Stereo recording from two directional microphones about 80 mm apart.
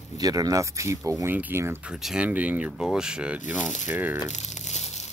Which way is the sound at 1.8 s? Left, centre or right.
Centre.